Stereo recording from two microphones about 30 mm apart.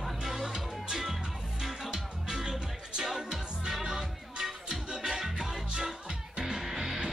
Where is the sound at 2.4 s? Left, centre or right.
Centre.